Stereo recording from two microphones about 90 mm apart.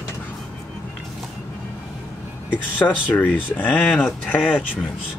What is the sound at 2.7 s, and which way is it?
Speech, 20° left (ahead or behind).